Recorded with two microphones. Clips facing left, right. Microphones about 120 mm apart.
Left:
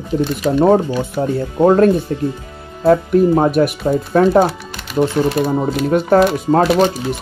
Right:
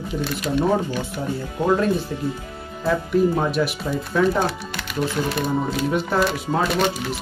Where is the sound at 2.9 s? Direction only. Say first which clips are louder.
Left 8 dB; 50° left (ahead or behind).